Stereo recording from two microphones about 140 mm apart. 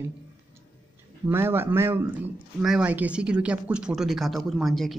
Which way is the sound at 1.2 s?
15° right (ahead or behind).